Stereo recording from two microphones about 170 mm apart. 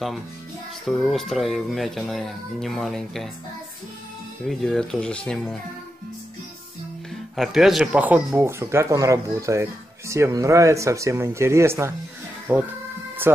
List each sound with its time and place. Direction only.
0.8 s speech: centre (ahead or behind)
4.5 s speech: centre (ahead or behind)
7.3 s speech: centre (ahead or behind)